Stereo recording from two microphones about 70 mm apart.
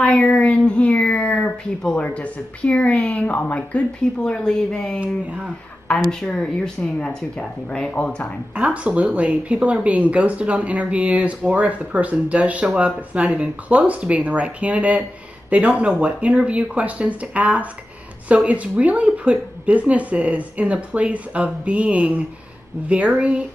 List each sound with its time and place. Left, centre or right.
0.0 s a sound: centre
1.8 s speech: centre
2.0 s speech: centre
4.0 s speech: centre
5.0 s speech: centre
5.9 s speech: centre
8.5 s speech: centre